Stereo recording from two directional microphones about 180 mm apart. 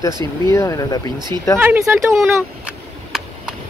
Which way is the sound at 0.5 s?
15° left (ahead or behind).